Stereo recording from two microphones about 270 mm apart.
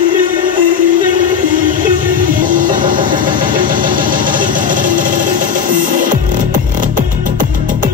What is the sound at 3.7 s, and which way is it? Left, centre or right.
Engine, right.